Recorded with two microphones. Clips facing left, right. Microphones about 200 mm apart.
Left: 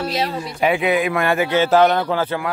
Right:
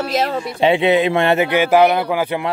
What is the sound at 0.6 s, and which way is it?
A man's voice, 25° right (ahead or behind).